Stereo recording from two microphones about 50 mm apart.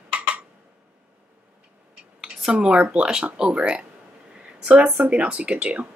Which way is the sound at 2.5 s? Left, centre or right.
Right.